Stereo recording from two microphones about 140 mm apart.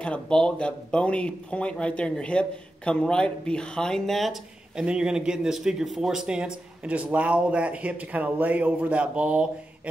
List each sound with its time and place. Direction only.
0.0 s speech: 5° left (ahead or behind)